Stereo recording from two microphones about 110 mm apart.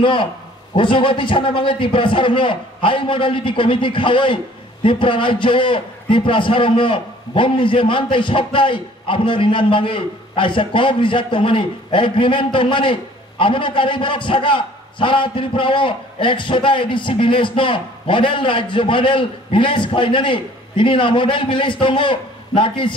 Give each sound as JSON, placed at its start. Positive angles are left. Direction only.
{"t": 0.0, "sound": "a man's voice", "side_deg": 50}